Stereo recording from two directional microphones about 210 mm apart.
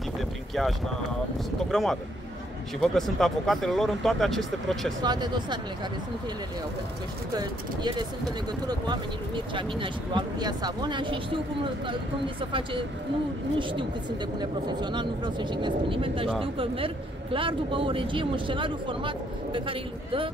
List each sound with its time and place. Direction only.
1.7 s speech: centre (ahead or behind)
5.0 s a man's voice: 20° right (ahead or behind)
7.3 s a man's voice: 20° right (ahead or behind)
14.4 s a man's voice: 20° right (ahead or behind)